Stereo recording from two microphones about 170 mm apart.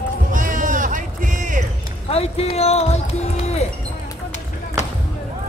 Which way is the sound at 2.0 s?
35° left (ahead or behind).